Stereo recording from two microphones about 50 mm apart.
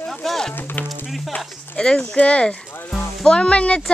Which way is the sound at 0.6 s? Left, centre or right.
Left.